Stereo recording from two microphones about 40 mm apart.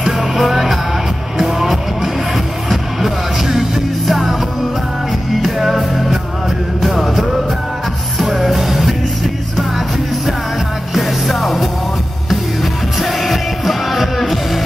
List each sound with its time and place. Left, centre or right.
0.0 s music: centre
5.4 s music: centre
11.0 s music: centre
13.0 s music: centre